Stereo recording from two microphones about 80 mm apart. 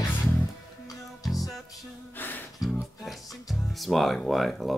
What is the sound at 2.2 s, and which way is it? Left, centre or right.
Music, left.